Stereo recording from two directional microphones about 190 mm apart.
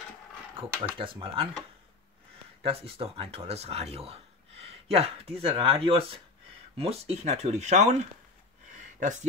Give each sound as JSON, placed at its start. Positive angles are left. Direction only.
{"t": 0.6, "sound": "speech", "side_deg": -25}
{"t": 2.6, "sound": "speech", "side_deg": -30}